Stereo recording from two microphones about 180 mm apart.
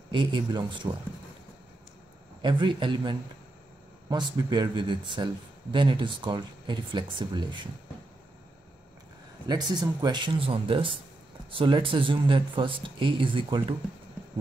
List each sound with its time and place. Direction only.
0.1 s speech: 25° right (ahead or behind)
2.4 s speech: 25° right (ahead or behind)
9.5 s speech: 25° right (ahead or behind)